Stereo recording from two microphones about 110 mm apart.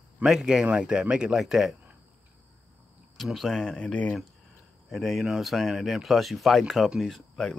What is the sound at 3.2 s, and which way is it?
Speech, centre (ahead or behind).